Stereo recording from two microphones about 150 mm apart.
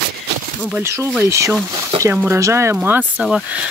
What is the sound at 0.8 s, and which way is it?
Speech, 20° right (ahead or behind).